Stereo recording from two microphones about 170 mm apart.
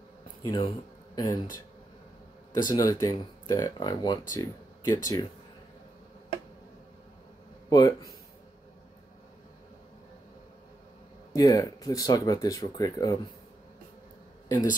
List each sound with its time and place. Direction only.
0.5 s speech: 20° left (ahead or behind)
2.5 s speech: 20° left (ahead or behind)
7.7 s speech: 20° left (ahead or behind)
11.3 s speech: 20° left (ahead or behind)